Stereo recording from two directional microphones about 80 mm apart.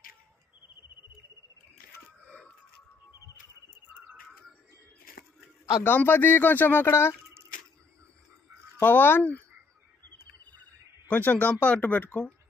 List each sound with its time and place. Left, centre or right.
5.9 s speech: left
8.7 s speech: left
11.1 s speech: centre